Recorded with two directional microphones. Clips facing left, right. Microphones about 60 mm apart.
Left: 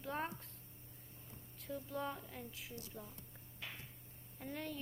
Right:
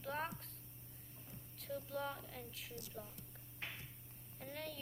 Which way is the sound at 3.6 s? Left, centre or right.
Right.